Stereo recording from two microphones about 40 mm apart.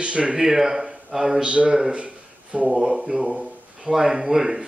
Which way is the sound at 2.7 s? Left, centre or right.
Centre.